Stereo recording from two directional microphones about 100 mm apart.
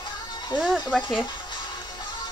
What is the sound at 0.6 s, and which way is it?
Speech, centre (ahead or behind).